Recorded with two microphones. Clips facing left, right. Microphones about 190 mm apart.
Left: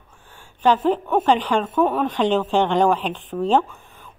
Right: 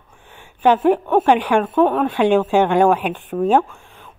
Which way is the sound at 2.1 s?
15° right (ahead or behind).